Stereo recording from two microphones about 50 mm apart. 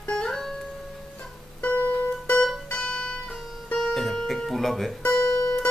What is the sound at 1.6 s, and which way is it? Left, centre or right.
Music, left.